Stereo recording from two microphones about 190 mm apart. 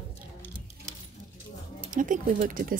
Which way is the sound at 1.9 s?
45° right (ahead or behind).